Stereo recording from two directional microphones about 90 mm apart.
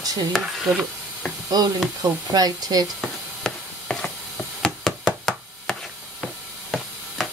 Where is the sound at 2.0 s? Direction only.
45° right (ahead or behind).